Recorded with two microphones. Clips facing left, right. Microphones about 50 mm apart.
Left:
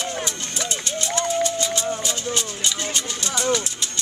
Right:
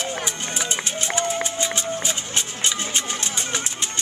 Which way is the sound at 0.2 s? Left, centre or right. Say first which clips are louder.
Right 1 dB; centre.